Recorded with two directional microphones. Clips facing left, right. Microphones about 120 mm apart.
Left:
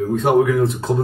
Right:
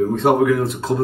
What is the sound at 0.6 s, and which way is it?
Speech, 25° left (ahead or behind).